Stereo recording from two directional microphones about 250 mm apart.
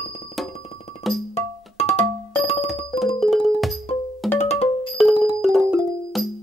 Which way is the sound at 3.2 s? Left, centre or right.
Centre.